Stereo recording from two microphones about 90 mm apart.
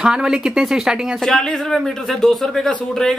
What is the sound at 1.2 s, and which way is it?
Speech, 5° left (ahead or behind).